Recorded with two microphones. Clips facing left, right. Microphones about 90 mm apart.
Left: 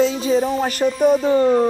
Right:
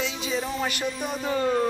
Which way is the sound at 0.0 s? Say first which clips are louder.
Left 12 dB; 40° left (ahead or behind).